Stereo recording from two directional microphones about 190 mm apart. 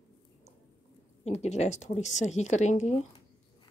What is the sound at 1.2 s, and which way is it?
Speech, 35° left (ahead or behind).